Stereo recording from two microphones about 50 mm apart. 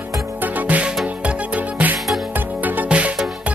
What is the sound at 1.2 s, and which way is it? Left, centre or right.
Music, right.